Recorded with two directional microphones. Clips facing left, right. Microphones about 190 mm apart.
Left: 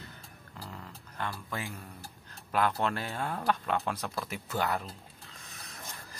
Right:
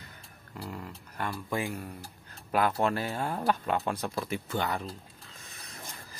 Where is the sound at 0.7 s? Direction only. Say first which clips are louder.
Right 7 dB; 10° right (ahead or behind).